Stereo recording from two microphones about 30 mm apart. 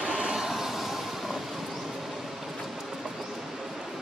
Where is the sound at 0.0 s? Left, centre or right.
Right.